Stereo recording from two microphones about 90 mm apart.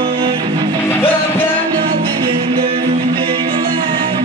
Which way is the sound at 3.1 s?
80° right.